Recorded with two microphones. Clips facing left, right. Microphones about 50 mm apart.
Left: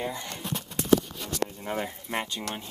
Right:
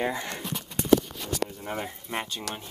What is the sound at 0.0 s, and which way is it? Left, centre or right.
Speech, right.